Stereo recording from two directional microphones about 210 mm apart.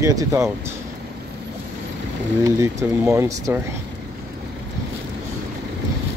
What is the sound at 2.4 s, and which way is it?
Speech, 15° right (ahead or behind).